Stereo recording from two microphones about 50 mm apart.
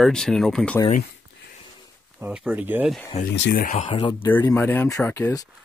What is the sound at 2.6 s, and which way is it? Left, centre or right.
Speech, right.